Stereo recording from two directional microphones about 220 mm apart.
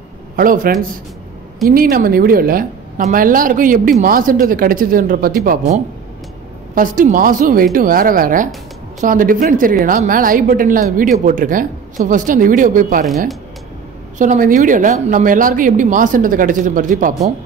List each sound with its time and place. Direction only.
0.4 s a woman's voice: 40° right (ahead or behind)
14.1 s a woman's voice: 35° right (ahead or behind)